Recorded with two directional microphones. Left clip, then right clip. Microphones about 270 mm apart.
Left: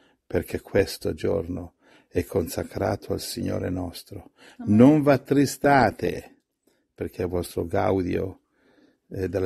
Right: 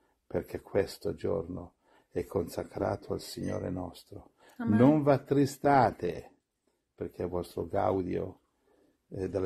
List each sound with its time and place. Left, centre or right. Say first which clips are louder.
0.3 s speech: left 8 dB; left